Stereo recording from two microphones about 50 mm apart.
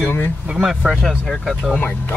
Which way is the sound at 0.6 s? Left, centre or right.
Centre.